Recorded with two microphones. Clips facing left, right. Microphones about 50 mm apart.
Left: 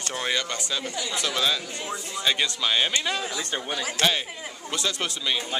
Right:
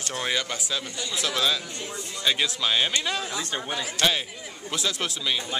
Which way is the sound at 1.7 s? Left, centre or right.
Left.